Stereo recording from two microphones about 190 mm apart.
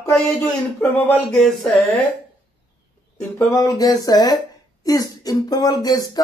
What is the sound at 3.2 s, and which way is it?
Speech, 10° left (ahead or behind).